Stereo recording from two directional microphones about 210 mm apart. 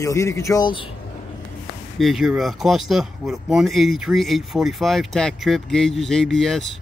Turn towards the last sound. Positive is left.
turn(degrees=0)  # may be behind; listen again after turning